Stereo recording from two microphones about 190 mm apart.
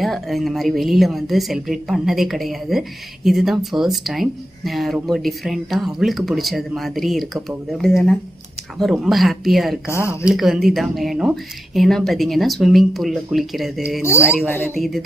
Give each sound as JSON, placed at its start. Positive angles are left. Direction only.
{"t": 0.0, "sound": "speech", "side_deg": 0}
{"t": 9.9, "sound": "speech", "side_deg": -15}
{"t": 10.3, "sound": "speech", "side_deg": 0}
{"t": 14.0, "sound": "speech", "side_deg": 15}
{"t": 14.8, "sound": "speech", "side_deg": 0}